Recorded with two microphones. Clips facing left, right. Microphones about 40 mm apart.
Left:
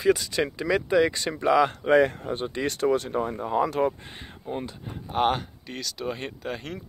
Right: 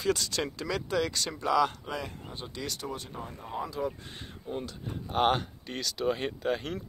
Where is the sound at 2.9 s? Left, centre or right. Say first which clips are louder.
Left 14 dB; left.